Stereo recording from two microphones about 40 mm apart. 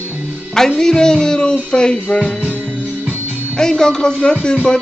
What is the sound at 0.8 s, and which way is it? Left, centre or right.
Music, centre.